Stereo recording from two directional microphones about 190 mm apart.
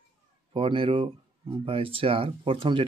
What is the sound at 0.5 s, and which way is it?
Speech, 25° right (ahead or behind).